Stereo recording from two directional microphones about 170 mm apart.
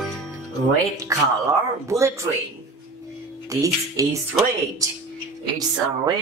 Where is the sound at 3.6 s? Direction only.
20° right (ahead or behind).